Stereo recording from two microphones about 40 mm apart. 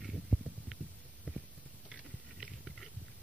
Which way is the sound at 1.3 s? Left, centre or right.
Centre.